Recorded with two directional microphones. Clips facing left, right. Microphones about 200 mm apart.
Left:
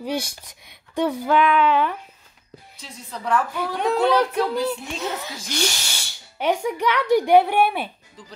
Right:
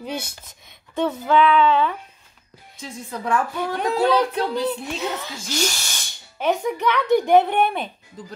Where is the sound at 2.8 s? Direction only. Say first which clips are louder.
Right 4 dB; 50° right (ahead or behind).